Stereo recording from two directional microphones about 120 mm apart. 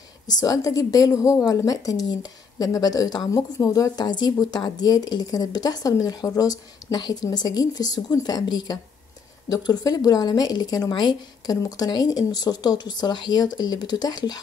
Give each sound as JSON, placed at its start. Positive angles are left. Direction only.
{"t": 0.3, "sound": "a woman's voice", "side_deg": 30}